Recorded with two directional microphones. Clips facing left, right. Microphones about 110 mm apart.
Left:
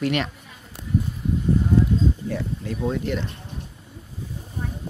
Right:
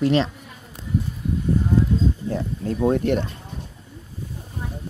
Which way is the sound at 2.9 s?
50° right (ahead or behind).